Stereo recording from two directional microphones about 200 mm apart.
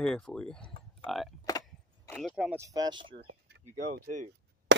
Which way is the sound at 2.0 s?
10° left (ahead or behind).